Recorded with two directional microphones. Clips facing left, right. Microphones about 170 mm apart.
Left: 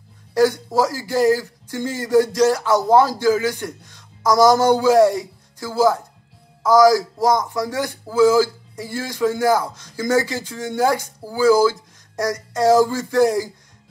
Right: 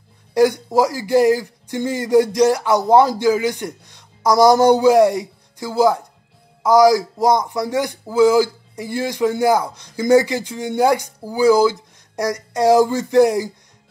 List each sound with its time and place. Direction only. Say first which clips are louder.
0.3 s speech: right 2 dB; 15° right (ahead or behind)